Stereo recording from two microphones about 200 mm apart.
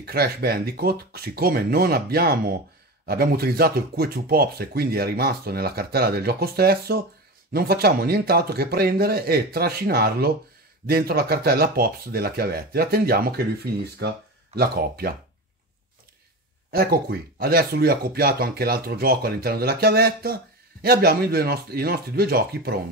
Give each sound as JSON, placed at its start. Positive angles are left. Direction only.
{"t": 0.0, "sound": "speech", "side_deg": -50}
{"t": 16.7, "sound": "speech", "side_deg": -50}